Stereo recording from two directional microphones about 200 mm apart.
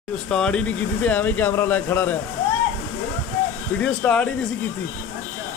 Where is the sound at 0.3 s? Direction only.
5° left (ahead or behind).